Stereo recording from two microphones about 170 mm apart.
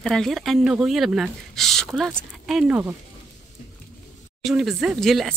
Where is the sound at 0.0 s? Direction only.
Centre (ahead or behind).